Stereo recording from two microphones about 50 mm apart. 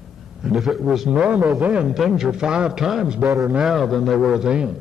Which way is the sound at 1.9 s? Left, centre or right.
Centre.